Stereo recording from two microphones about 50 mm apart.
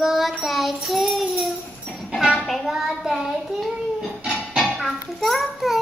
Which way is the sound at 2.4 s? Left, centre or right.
Centre.